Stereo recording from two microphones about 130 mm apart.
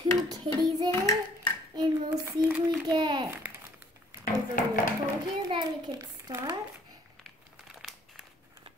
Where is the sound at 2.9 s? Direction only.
35° right (ahead or behind).